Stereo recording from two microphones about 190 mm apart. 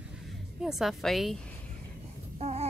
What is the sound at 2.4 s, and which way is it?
Babbling, 35° right (ahead or behind).